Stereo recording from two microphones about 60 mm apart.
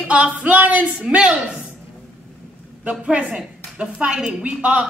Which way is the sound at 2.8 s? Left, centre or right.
Centre.